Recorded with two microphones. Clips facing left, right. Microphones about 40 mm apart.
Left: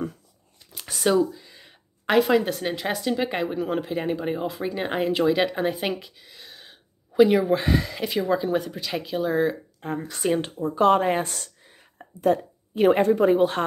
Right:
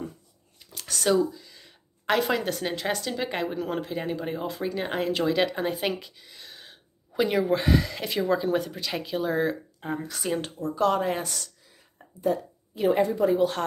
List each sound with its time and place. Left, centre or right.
0.7 s a sound: centre
2.1 s speech: centre
10.2 s speech: left
12.2 s speech: left